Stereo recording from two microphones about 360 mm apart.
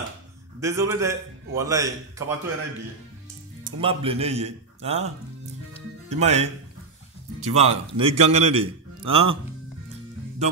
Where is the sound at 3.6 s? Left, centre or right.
Centre.